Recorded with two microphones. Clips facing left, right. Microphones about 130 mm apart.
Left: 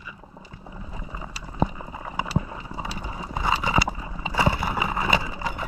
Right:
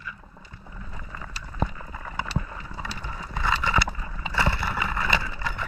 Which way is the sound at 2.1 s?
10° left (ahead or behind).